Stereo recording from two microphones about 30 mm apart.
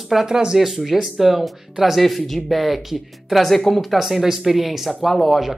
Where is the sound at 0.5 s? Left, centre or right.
Centre.